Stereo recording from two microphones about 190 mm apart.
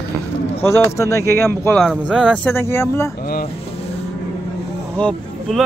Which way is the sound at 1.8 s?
Centre (ahead or behind).